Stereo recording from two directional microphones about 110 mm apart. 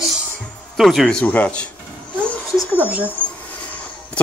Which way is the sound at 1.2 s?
15° left (ahead or behind).